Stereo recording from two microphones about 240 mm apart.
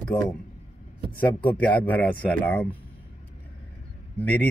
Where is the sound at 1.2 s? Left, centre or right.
Centre.